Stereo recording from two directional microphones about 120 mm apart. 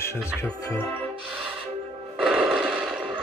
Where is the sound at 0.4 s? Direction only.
20° left (ahead or behind).